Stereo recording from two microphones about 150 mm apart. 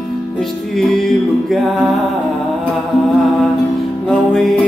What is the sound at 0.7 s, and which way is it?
Music, 5° left (ahead or behind).